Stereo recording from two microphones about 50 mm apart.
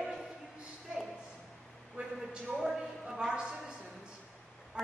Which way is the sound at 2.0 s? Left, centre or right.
Right.